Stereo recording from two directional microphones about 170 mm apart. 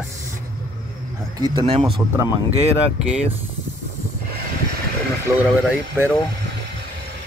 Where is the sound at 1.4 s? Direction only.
30° right (ahead or behind).